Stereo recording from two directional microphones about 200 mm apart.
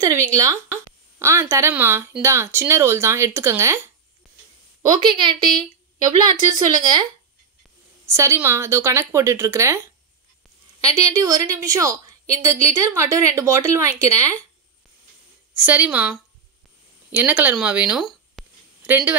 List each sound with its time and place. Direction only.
0.0 s speech: 15° right (ahead or behind)
5.0 s a woman's voice: 25° right (ahead or behind)
8.1 s speech: 15° right (ahead or behind)
10.9 s speech: 15° right (ahead or behind)
15.5 s speech: 10° right (ahead or behind)